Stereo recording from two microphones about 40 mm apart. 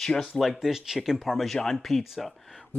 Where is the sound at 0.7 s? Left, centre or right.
Centre.